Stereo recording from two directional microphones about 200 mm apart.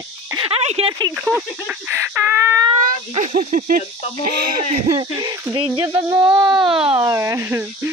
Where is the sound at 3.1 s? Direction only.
40° right (ahead or behind).